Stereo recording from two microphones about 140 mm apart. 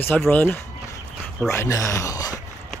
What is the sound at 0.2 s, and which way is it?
Speech, 10° left (ahead or behind).